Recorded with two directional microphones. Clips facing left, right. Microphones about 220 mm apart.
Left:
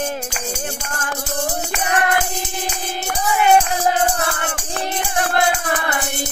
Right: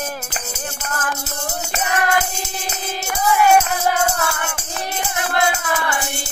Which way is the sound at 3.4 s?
30° left (ahead or behind).